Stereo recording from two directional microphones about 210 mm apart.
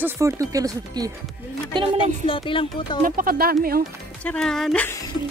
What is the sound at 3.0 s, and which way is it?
Speech, 40° right (ahead or behind).